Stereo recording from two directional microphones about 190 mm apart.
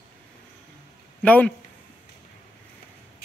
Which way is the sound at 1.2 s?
10° left (ahead or behind).